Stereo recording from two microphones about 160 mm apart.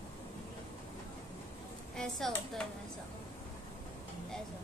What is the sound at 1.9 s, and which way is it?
Speech, centre (ahead or behind).